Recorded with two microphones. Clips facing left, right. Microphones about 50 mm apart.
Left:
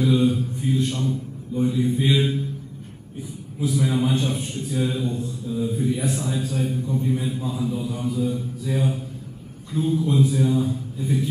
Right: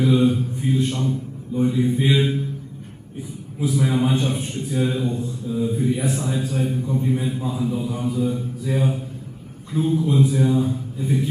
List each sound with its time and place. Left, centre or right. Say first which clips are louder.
0.0 s a man's voice: right 2 dB; right
3.6 s a man's voice: right 2 dB; right